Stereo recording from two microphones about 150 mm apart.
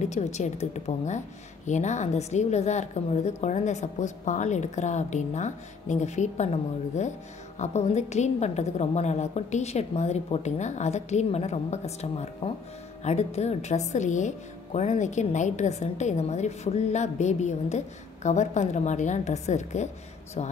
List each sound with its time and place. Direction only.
0.1 s a woman's voice: 50° left (ahead or behind)